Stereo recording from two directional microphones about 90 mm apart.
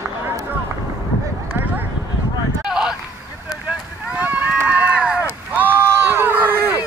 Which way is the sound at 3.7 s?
15° right (ahead or behind).